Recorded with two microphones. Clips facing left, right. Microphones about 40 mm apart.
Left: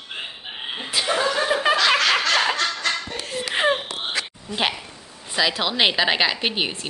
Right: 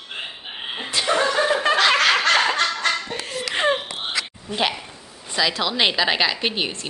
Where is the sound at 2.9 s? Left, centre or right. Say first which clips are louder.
Right 2 dB; centre.